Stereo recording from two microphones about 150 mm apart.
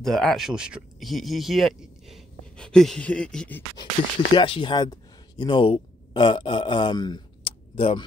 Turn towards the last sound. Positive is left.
turn(degrees=35)  # may be behind; listen again after turning